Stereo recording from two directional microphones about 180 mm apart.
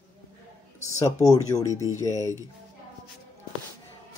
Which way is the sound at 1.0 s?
15° left (ahead or behind).